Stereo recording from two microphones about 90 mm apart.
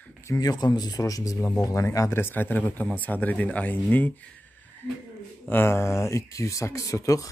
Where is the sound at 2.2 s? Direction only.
20° left (ahead or behind).